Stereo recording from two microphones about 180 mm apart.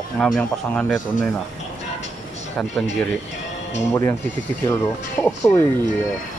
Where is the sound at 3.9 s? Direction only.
15° left (ahead or behind).